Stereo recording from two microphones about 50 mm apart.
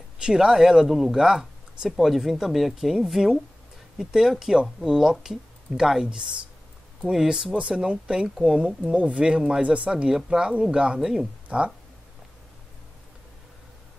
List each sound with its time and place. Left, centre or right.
0.2 s speech: centre
9.8 s speech: centre
11.4 s speech: right